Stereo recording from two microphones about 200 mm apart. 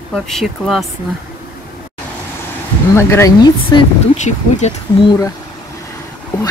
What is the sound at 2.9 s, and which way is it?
Speech, 15° left (ahead or behind).